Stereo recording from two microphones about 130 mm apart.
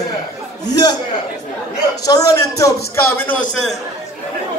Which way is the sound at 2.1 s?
25° left (ahead or behind).